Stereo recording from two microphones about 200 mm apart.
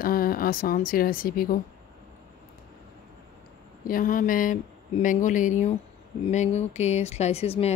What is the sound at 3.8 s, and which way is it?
Speech, 45° left (ahead or behind).